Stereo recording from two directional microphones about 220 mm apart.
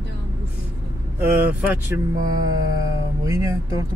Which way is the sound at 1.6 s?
10° right (ahead or behind).